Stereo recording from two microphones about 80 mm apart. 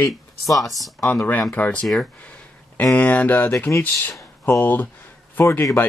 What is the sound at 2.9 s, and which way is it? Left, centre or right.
Speech, left.